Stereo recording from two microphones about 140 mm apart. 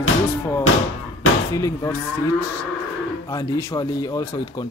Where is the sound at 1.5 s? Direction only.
25° left (ahead or behind).